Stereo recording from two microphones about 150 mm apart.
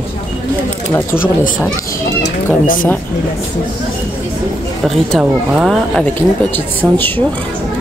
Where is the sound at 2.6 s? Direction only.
70° left (ahead or behind).